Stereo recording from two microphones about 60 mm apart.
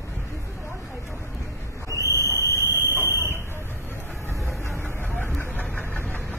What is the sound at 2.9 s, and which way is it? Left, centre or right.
Fire alarm, right.